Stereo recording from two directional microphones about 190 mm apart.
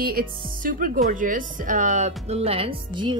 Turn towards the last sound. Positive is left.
turn(degrees=-25)  # may be behind; listen again after turning